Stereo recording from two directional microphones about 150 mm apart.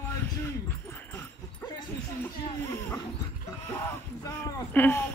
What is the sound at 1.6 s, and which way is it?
Dog, 20° left (ahead or behind).